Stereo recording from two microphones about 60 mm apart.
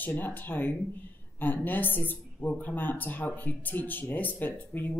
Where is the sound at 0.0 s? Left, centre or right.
Left.